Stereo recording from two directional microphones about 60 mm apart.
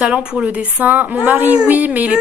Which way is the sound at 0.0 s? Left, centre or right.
Centre.